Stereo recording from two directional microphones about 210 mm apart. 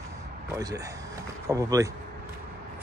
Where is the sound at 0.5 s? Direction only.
15° right (ahead or behind).